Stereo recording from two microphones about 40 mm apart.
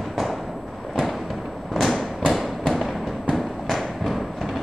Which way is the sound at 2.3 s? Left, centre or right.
Centre.